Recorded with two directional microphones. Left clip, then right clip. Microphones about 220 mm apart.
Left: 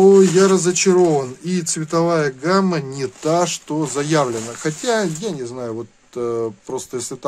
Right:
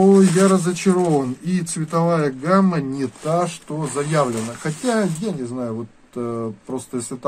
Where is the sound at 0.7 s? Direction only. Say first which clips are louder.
Left 5 dB; 50° left (ahead or behind).